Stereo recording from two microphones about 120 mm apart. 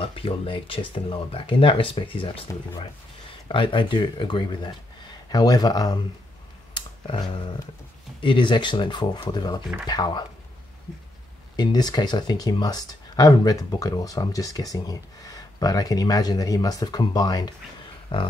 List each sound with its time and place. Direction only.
0.0 s speech: 50° left (ahead or behind)
6.7 s a sound: 45° left (ahead or behind)
8.2 s speech: 40° left (ahead or behind)
11.5 s speech: 35° left (ahead or behind)